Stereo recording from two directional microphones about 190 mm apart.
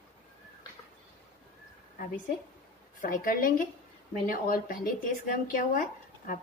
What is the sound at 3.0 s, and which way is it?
Speech, 45° left (ahead or behind).